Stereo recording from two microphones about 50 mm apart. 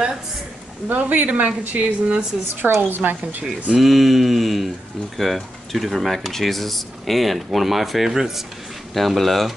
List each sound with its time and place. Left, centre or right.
0.8 s speech: right
3.1 s speech: right
3.7 s speech: centre